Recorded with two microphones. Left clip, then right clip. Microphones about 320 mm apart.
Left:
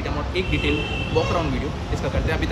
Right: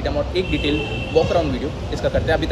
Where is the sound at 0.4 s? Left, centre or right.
Right.